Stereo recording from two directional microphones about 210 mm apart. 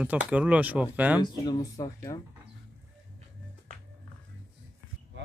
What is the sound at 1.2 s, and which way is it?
Speech, 20° left (ahead or behind).